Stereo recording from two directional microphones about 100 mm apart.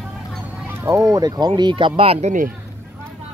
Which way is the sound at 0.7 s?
20° right (ahead or behind).